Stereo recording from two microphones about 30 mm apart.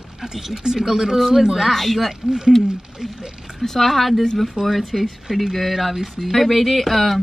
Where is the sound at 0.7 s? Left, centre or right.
Right.